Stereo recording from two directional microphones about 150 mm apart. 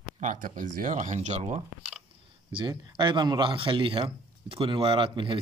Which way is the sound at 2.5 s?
25° right (ahead or behind).